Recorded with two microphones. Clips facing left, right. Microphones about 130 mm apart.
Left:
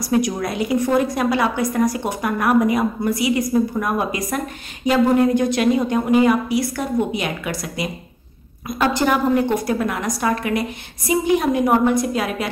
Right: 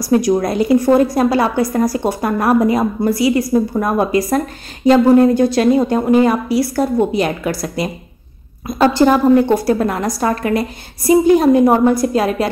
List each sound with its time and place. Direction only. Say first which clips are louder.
0.0 s a woman's voice: right 6 dB; 35° right (ahead or behind)